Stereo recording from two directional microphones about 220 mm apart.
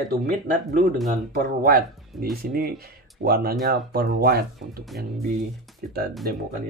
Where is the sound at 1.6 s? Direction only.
40° right (ahead or behind).